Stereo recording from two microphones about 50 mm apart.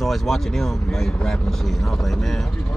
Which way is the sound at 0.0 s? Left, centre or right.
Centre.